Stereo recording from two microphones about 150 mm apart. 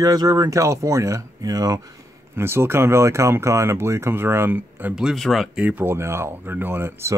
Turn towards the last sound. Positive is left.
turn(degrees=-15)  # may be behind; listen again after turning